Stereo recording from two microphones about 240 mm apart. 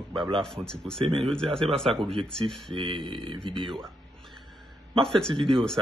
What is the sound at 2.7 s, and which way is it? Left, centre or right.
Speech, right.